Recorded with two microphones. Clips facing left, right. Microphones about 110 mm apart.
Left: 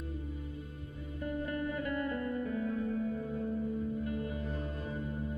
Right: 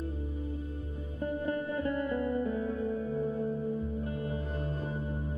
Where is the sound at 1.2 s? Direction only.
30° right (ahead or behind).